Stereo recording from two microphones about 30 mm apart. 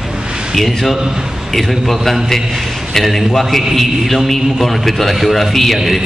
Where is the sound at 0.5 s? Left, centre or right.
Centre.